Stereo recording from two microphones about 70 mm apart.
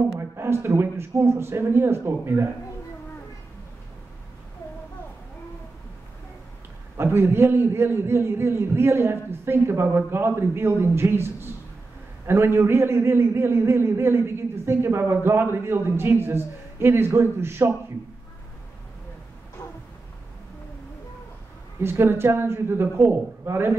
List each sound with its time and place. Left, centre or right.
0.2 s a man's voice: right
7.0 s a man's voice: right
19.6 s a sound: left
21.8 s a man's voice: right